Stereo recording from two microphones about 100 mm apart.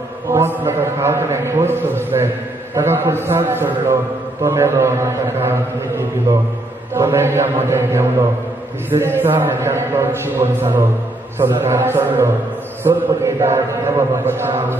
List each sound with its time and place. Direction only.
0.3 s a man's voice: 25° right (ahead or behind)